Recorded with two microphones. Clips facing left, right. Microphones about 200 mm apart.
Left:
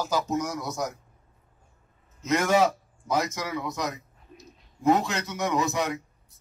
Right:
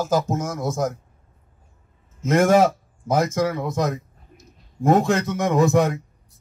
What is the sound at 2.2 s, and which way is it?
Speech, 50° right (ahead or behind).